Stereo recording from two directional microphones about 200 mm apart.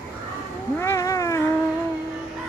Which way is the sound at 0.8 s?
15° left (ahead or behind).